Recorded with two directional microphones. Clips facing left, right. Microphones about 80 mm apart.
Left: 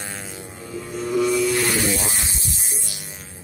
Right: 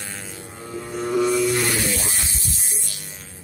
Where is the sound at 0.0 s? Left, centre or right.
Centre.